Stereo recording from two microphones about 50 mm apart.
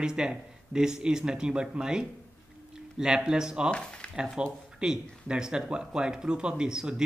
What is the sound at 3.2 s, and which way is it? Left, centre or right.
Speech, centre.